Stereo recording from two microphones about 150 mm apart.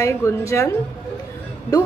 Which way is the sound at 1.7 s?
25° left (ahead or behind).